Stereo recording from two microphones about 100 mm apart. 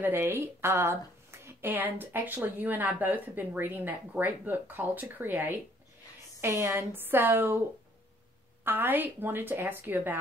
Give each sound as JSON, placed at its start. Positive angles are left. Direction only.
{"t": 0.0, "sound": "speech", "side_deg": -20}
{"t": 8.6, "sound": "speech", "side_deg": -20}